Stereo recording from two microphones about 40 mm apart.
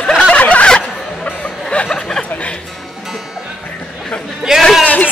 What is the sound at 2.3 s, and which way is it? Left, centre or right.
Speech, left.